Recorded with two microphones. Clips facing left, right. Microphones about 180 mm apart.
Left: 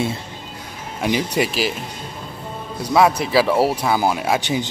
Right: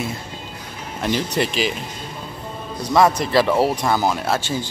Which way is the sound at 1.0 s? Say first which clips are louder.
Left 1 dB; 10° left (ahead or behind).